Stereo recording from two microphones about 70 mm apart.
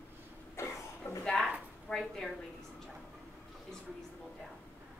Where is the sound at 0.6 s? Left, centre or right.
Left.